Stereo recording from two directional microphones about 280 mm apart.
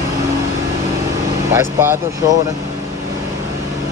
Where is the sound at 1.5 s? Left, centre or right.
Centre.